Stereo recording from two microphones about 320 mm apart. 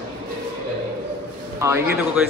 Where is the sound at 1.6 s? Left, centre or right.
Centre.